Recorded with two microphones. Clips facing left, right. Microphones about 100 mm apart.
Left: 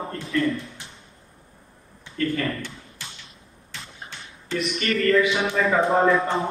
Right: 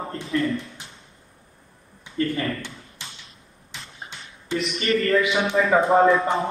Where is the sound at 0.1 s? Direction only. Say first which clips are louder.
Even; 30° right (ahead or behind).